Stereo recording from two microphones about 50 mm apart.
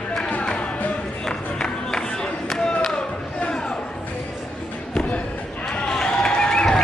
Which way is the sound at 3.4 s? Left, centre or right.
Centre.